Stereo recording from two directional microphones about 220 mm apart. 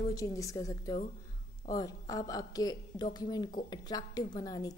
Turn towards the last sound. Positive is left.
turn(degrees=15)  # may be behind; listen again after turning